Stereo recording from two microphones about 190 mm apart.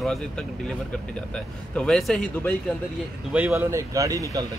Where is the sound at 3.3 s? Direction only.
10° right (ahead or behind).